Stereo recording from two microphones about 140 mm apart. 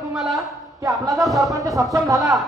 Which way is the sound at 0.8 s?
25° right (ahead or behind).